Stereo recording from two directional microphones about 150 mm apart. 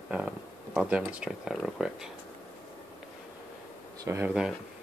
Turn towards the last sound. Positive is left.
turn(degrees=-15)  # may be behind; listen again after turning